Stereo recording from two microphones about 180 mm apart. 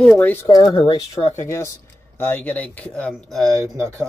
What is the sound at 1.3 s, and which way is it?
Speech, 15° left (ahead or behind).